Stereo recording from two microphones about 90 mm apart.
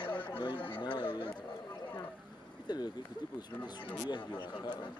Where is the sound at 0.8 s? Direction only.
65° left (ahead or behind).